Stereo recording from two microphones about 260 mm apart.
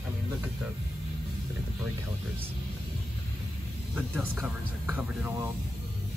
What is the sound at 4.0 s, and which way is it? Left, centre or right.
Speech, centre.